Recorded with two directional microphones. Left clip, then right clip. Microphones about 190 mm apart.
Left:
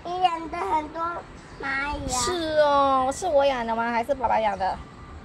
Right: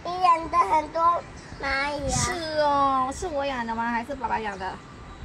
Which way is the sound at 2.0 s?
35° left (ahead or behind).